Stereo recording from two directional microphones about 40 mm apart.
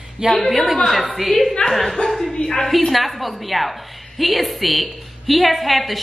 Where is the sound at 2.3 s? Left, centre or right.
Left.